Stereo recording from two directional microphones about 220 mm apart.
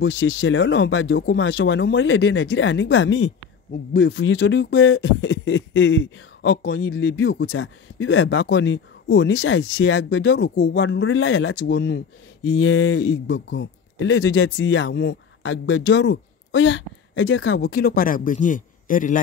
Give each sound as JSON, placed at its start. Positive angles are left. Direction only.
{"t": 0.0, "sound": "speech", "side_deg": 60}
{"t": 17.6, "sound": "speech", "side_deg": 40}